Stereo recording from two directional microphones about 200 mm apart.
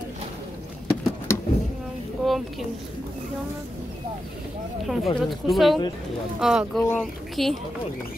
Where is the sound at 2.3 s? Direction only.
Centre (ahead or behind).